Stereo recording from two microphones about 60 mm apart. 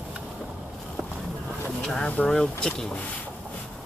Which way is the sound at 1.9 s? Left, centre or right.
Left.